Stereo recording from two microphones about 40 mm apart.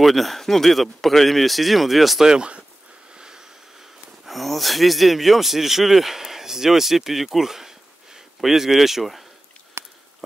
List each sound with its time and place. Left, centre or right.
0.0 s speech: centre
2.2 s speech: right
3.2 s a sound: centre
4.3 s speech: centre